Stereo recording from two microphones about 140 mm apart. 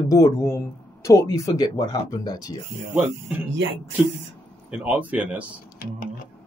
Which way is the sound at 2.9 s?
10° right (ahead or behind).